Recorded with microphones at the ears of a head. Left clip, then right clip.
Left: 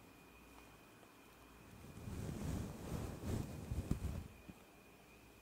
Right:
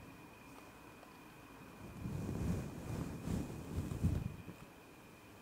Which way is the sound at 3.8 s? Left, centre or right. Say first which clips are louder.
Right 4 dB; right.